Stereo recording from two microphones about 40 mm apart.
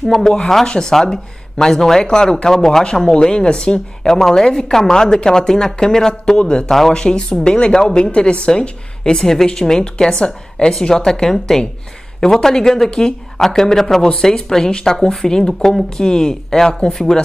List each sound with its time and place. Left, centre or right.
0.0 s a woman's voice: centre